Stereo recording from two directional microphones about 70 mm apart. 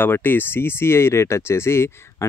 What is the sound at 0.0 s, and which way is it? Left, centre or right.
Speech, left.